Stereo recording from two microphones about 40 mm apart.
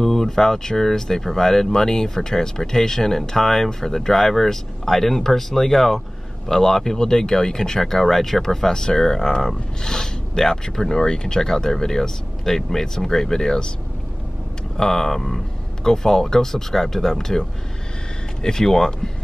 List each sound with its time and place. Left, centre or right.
0.0 s speech: centre
14.8 s speech: centre